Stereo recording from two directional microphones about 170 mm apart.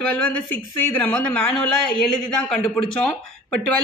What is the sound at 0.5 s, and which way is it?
Speech, 10° left (ahead or behind).